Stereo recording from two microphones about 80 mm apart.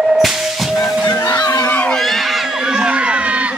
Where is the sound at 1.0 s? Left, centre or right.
Left.